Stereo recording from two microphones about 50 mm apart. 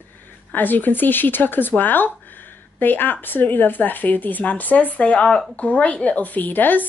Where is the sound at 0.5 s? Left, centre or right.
Left.